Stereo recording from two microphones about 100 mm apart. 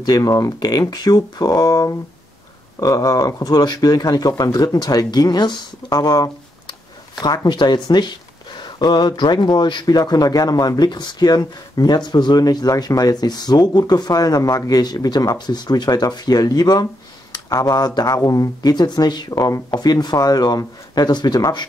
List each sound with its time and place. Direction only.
0.0 s speech: 40° left (ahead or behind)